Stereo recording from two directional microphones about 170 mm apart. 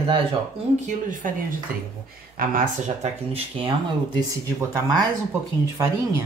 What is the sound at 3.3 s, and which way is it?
Speech, 30° right (ahead or behind).